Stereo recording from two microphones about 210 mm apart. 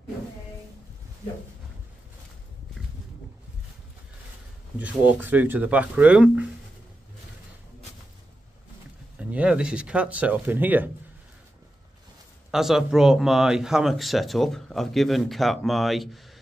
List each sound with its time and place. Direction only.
4.7 s speech: 10° right (ahead or behind)
9.2 s speech: 5° right (ahead or behind)
12.4 s speech: centre (ahead or behind)